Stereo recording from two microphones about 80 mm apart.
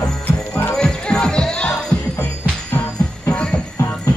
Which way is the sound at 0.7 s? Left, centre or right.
Centre.